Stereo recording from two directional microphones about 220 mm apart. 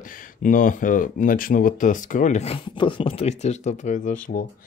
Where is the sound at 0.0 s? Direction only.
40° left (ahead or behind).